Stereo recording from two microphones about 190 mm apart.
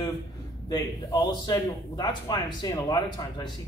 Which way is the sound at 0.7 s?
20° left (ahead or behind).